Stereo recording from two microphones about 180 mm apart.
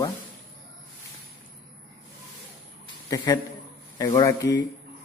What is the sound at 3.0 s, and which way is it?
A man's voice, 20° left (ahead or behind).